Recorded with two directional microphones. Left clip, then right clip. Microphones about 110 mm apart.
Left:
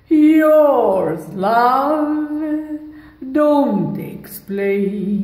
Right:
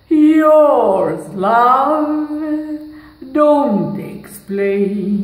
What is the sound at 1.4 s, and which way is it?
Female singing, 25° left (ahead or behind).